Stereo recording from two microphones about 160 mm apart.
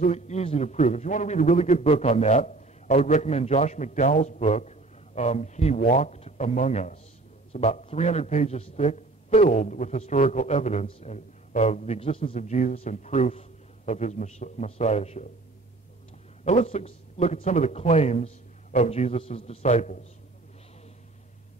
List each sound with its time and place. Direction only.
0.0 s a man's voice: 45° left (ahead or behind)
16.4 s a man's voice: 45° left (ahead or behind)